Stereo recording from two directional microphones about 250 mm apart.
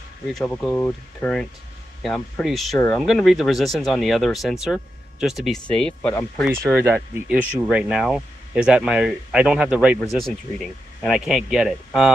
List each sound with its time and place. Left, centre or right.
0.3 s speech: centre
6.6 s speech: centre
11.0 s speech: centre